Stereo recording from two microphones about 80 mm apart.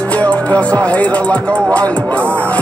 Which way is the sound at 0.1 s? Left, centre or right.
Centre.